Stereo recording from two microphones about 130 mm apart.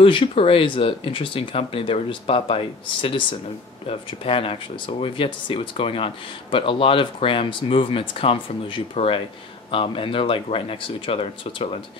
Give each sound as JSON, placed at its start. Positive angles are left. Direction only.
{"t": 0.0, "sound": "speech", "side_deg": 45}